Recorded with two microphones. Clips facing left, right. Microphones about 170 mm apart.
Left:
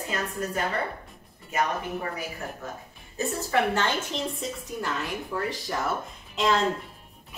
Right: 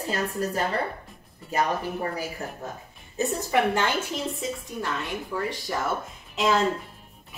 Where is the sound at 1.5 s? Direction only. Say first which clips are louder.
Right 2 dB; 35° right (ahead or behind).